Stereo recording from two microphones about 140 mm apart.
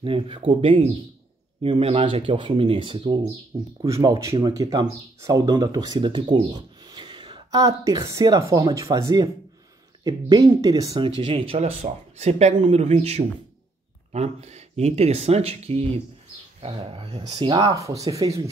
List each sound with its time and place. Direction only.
0.0 s speech: 40° right (ahead or behind)
3.8 s speech: 25° right (ahead or behind)
4.3 s speech: 40° right (ahead or behind)
4.6 s speech: 25° right (ahead or behind)
11.0 s speech: 40° right (ahead or behind)
17.7 s speech: 25° right (ahead or behind)